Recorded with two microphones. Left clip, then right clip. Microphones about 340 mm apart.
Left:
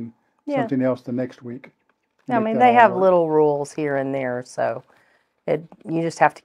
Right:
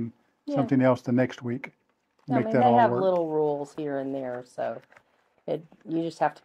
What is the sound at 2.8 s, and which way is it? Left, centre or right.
Speech, left.